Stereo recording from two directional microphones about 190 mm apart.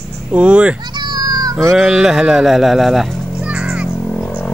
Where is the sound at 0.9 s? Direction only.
20° right (ahead or behind).